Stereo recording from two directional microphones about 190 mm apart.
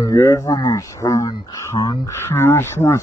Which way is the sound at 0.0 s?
15° left (ahead or behind).